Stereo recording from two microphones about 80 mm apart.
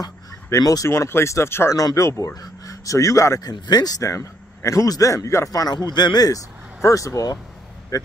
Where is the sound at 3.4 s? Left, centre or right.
Left.